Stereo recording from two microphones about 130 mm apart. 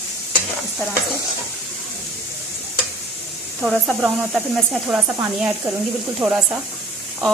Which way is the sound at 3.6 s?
5° right (ahead or behind).